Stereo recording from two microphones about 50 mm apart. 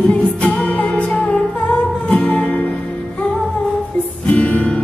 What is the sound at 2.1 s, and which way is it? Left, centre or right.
Music, centre.